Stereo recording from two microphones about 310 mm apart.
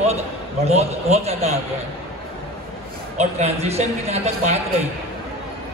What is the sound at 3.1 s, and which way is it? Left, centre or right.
Speech, centre.